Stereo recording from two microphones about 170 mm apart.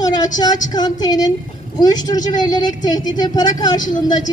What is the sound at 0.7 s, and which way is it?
A woman's voice, 25° left (ahead or behind).